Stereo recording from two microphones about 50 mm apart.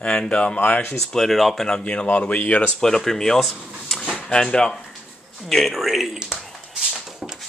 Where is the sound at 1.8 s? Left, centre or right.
Left.